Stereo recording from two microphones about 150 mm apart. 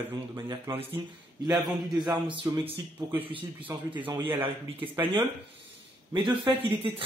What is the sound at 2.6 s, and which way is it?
A man's voice, 10° right (ahead or behind).